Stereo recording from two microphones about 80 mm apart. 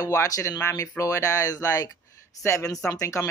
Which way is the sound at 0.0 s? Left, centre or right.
Left.